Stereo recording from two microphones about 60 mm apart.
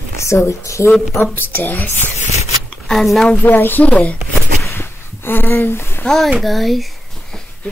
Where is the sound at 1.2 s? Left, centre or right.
Left.